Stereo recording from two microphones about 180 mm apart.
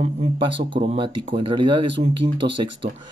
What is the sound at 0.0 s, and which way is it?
Speech, 30° right (ahead or behind).